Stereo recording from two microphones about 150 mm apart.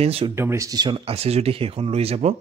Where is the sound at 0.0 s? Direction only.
40° right (ahead or behind).